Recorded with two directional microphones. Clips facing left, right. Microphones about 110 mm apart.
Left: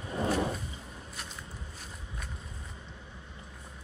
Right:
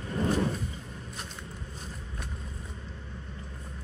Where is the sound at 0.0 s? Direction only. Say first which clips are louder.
Right 2 dB; 15° left (ahead or behind).